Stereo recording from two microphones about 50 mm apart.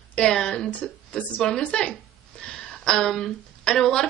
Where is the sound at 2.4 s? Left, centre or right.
Centre.